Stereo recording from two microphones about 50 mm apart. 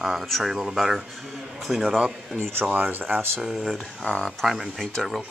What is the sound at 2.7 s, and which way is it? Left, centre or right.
Speech, right.